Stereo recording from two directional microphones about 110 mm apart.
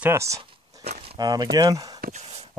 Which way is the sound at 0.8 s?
80° right.